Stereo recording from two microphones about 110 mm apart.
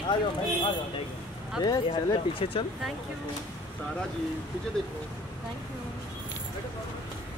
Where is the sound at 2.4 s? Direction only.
55° left (ahead or behind).